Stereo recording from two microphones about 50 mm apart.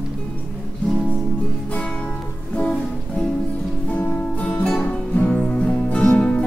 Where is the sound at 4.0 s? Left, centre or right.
Left.